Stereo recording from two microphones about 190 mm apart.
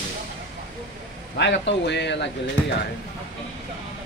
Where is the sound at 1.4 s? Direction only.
65° left (ahead or behind).